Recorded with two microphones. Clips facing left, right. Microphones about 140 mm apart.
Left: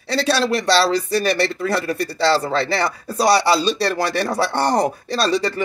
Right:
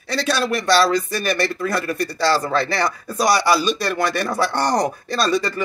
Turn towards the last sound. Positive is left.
turn(degrees=30)  # may be behind; listen again after turning